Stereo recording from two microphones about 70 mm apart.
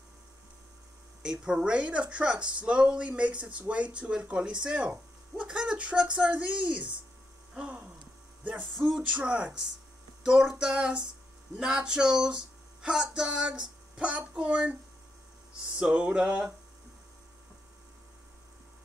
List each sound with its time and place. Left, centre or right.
1.2 s speech: centre
8.7 s music: centre
9.1 s speech: centre
15.8 s speech: centre